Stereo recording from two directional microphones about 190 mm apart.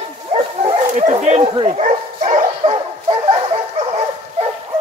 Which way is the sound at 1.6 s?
40° right (ahead or behind).